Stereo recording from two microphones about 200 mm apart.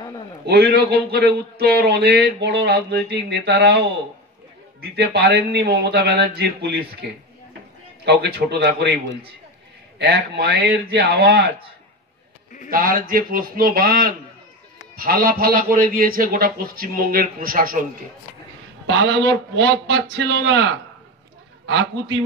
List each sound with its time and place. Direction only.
0.5 s speech: 55° right (ahead or behind)
4.8 s speech: 55° right (ahead or behind)
12.6 s a man's voice: 45° right (ahead or behind)
18.9 s a man's voice: 65° right (ahead or behind)